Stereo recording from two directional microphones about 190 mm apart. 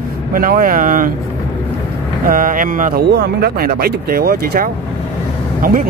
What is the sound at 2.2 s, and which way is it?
Speech, 45° right (ahead or behind).